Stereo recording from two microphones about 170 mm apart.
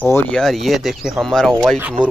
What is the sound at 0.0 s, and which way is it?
Speech, 10° left (ahead or behind).